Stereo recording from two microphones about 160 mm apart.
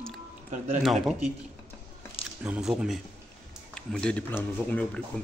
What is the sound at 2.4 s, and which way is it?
Speech, 5° right (ahead or behind).